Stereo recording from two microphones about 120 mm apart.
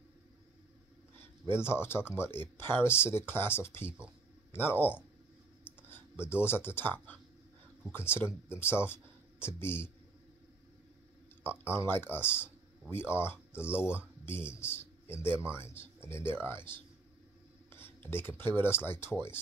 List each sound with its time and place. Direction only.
1.4 s speech: 20° left (ahead or behind)
6.1 s speech: 20° left (ahead or behind)
11.4 s speech: 20° left (ahead or behind)
13.7 s speech: 10° right (ahead or behind)
14.2 s a man's voice: 20° left (ahead or behind)
17.7 s a sound: 20° left (ahead or behind)
18.6 s speech: 20° left (ahead or behind)